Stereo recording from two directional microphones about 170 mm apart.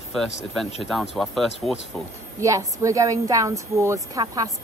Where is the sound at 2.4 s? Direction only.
20° right (ahead or behind).